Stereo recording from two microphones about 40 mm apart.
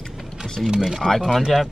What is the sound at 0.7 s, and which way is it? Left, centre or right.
Speech, centre.